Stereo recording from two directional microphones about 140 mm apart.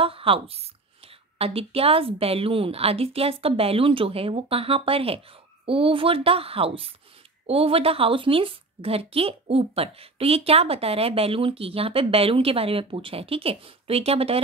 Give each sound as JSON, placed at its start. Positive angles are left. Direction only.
{"t": 0.0, "sound": "a woman's voice", "side_deg": -40}